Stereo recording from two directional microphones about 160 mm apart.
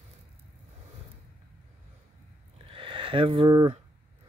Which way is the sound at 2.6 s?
35° right (ahead or behind).